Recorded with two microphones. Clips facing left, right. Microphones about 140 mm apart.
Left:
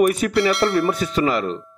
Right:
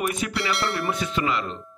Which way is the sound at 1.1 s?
40° left (ahead or behind).